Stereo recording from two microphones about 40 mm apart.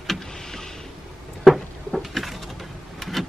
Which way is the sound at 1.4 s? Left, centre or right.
Centre.